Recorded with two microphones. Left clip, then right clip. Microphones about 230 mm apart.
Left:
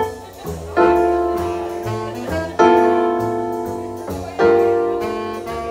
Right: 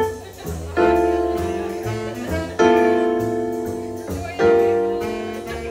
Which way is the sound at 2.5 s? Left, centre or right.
Left.